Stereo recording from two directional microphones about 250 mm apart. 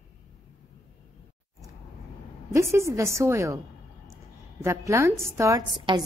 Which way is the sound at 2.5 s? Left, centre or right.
Centre.